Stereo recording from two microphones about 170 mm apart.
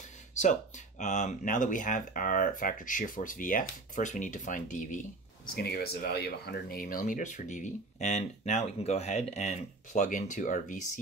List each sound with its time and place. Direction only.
0.3 s speech: 45° left (ahead or behind)
5.5 s speech: 65° left (ahead or behind); by 10.9 s 50° left (ahead or behind)